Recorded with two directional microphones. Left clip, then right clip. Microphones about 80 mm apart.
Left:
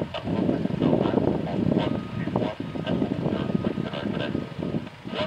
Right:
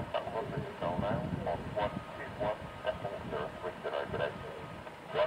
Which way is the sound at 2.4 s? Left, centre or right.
Left.